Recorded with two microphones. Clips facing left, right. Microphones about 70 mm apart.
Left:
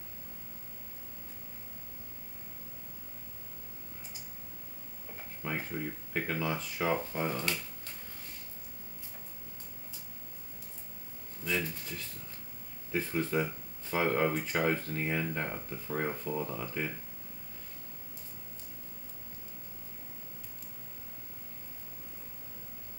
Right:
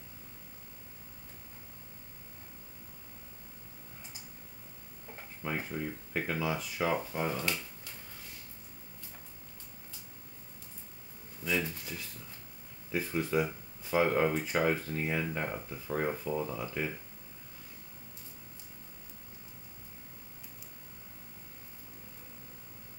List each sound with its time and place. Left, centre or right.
5.4 s speech: centre
11.4 s speech: centre
12.9 s speech: centre